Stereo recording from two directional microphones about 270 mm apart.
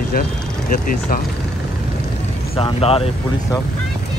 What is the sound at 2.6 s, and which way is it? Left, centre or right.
Speech, left.